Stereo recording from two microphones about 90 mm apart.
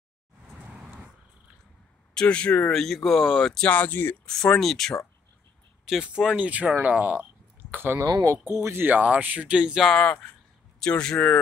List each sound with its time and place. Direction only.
2.1 s speech: 10° left (ahead or behind)
2.8 s speech: centre (ahead or behind)
3.6 s speech: 15° left (ahead or behind)
4.3 s speech: 5° left (ahead or behind)
5.9 s speech: 5° right (ahead or behind)
9.8 s speech: 10° left (ahead or behind)